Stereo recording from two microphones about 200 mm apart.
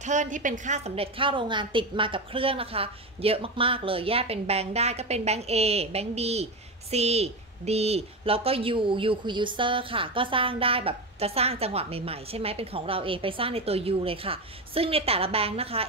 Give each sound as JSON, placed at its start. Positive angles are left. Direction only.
{"t": 0.0, "sound": "a woman's voice", "side_deg": -40}